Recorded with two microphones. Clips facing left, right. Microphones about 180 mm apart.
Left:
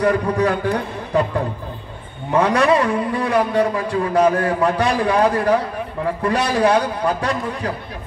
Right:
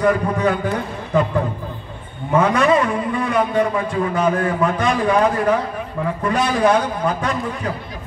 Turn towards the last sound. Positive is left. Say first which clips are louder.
# even
turn(degrees=35)  # may be behind; listen again after turning